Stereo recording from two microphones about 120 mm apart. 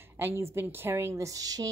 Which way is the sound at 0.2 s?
20° right (ahead or behind).